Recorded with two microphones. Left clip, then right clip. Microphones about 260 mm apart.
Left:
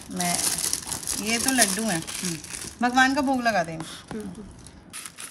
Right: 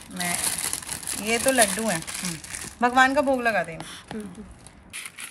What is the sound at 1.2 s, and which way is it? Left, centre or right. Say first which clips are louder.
Speech: right 3 dB; centre.